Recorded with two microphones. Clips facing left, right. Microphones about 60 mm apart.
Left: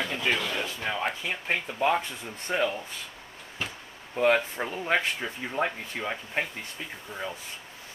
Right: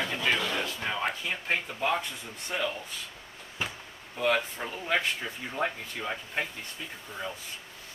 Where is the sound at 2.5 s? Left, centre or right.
Left.